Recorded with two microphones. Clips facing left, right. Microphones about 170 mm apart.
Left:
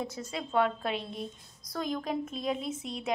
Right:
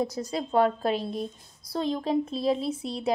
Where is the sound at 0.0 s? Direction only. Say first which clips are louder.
Right 7 dB; 35° right (ahead or behind).